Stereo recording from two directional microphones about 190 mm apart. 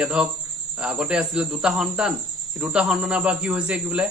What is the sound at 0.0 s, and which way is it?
Speech, 5° right (ahead or behind).